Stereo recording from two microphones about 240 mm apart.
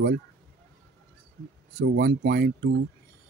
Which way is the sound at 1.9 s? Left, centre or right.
Right.